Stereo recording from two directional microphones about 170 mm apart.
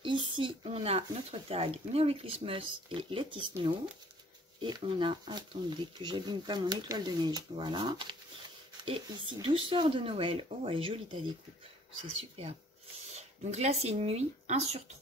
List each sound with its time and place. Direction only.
0.0 s speech: 30° right (ahead or behind)
4.6 s speech: 25° right (ahead or behind)